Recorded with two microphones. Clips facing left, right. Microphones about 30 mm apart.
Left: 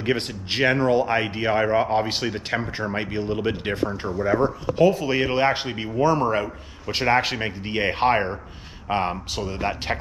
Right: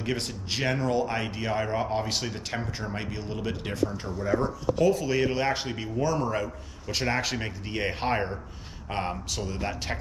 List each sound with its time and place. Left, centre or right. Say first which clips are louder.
0.0 s speech: left 6 dB; left